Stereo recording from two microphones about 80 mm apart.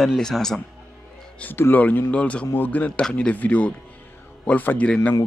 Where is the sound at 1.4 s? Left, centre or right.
Left.